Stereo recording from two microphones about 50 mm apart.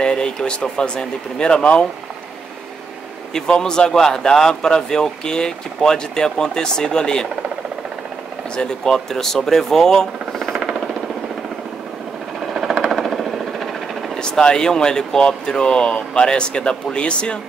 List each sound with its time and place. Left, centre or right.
0.0 s speech: centre
3.3 s speech: centre
8.5 s speech: centre
10.4 s jackhammer: centre
12.4 s a sound: centre
14.1 s speech: centre